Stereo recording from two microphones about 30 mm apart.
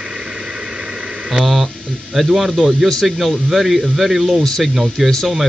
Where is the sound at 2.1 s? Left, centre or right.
Centre.